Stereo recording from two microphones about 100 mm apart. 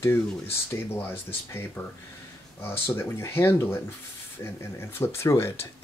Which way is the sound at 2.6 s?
25° left (ahead or behind).